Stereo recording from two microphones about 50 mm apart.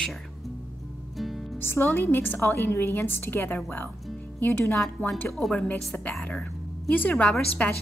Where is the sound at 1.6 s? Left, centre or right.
Left.